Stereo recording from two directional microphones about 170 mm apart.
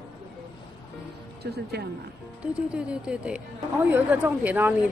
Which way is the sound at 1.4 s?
70° right (ahead or behind).